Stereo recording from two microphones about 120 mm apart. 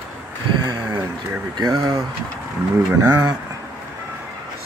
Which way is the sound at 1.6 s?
40° right (ahead or behind).